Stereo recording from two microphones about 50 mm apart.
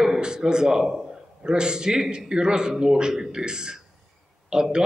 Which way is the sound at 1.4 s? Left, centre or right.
Centre.